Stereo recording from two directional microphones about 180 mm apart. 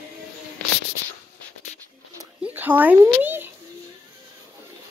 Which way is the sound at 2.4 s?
10° right (ahead or behind).